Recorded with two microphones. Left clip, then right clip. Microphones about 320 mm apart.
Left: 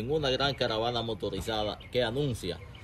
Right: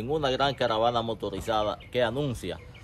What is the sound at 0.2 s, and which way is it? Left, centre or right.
Speech, centre.